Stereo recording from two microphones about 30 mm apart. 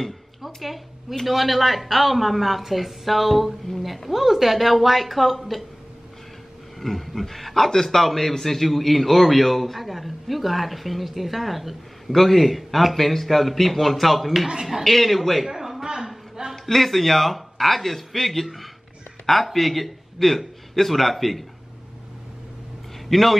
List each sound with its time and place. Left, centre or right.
1.2 s a man's voice: centre
6.8 s a man's voice: centre
15.4 s a sound: centre
15.8 s a sound: right
16.5 s a man's voice: centre
23.0 s speech: centre